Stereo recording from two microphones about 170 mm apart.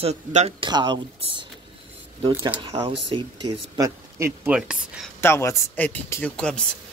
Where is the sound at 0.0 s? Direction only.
40° right (ahead or behind).